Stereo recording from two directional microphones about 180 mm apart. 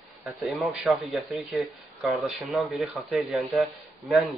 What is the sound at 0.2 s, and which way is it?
Speech, centre (ahead or behind).